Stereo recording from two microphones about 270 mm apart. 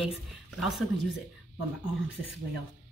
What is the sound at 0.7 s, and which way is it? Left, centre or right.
Speech, centre.